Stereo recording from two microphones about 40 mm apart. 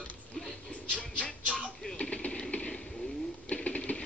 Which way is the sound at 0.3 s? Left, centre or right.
Centre.